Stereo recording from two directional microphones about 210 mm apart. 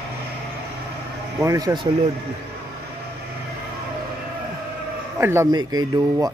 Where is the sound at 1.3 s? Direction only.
15° right (ahead or behind).